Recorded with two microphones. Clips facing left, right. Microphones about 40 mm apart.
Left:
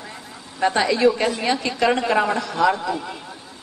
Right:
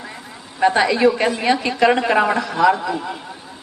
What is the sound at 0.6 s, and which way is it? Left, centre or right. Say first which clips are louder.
A woman's voice: right 3 dB; right.